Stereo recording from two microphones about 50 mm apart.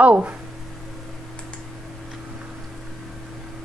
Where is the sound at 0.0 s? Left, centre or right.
Right.